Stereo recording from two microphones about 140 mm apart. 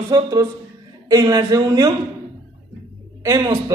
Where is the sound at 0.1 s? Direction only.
25° right (ahead or behind).